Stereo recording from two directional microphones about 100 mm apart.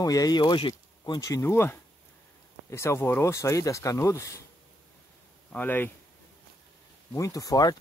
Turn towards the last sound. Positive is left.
turn(degrees=40)  # may be behind; listen again after turning